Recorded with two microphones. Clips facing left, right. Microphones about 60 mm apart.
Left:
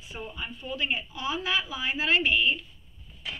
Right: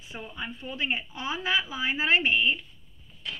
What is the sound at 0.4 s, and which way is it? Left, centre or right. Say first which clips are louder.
A woman's voice: even; right.